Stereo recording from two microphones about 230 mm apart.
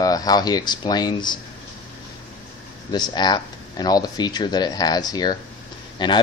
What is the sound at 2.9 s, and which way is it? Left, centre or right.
Speech, centre.